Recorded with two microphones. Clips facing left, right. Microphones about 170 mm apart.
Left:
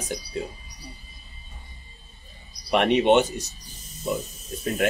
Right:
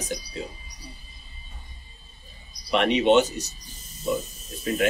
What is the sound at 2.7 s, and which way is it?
Speech, 50° left (ahead or behind).